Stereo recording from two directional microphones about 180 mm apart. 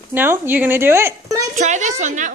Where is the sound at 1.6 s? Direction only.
40° right (ahead or behind).